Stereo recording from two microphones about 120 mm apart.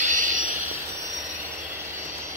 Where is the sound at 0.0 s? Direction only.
90° right.